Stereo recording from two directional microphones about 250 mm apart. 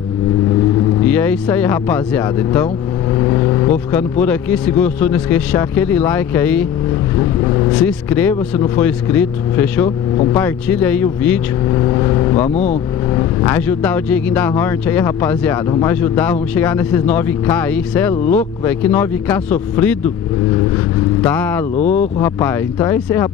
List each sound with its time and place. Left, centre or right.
1.0 s speech: centre
12.4 s speech: left
13.1 s speech: centre
21.2 s speech: centre
21.7 s speech: left
22.2 s speech: centre